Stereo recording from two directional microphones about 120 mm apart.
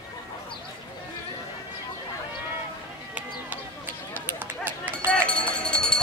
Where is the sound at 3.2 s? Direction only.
15° right (ahead or behind).